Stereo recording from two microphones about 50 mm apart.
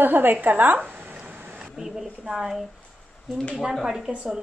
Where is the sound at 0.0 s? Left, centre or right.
Right.